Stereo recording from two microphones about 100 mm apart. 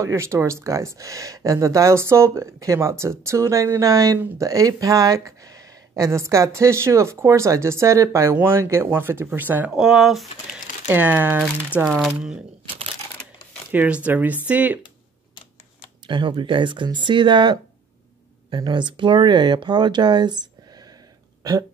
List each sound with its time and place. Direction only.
0.0 s speech: 30° right (ahead or behind)
9.7 s speech: 5° right (ahead or behind)
10.9 s speech: 15° right (ahead or behind)
13.7 s speech: 15° right (ahead or behind)
16.1 s speech: 55° right (ahead or behind)
21.4 s a sound: 40° right (ahead or behind)